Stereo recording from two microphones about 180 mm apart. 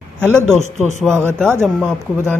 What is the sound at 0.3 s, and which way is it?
Speech, 15° right (ahead or behind).